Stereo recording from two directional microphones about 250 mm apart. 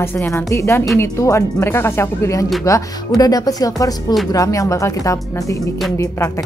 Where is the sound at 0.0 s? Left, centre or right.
Centre.